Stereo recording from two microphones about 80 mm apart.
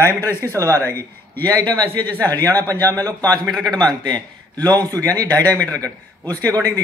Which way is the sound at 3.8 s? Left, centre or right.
Right.